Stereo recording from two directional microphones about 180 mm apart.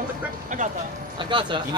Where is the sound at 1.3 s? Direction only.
25° right (ahead or behind).